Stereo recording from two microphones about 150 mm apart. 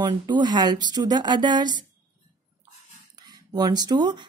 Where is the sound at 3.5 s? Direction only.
30° right (ahead or behind).